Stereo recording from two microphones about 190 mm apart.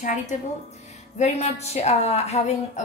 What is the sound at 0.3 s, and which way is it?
A woman's voice, 40° left (ahead or behind).